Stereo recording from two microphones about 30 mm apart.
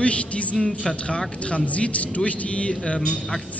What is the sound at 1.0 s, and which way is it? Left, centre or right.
A man's voice, left.